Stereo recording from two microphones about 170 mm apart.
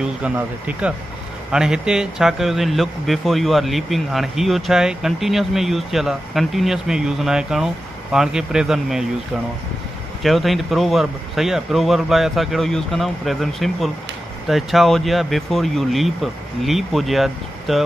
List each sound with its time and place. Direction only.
0.0 s a man's voice: 5° right (ahead or behind)
10.2 s a man's voice: centre (ahead or behind)